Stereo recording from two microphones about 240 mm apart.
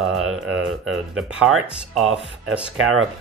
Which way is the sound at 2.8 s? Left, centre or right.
Right.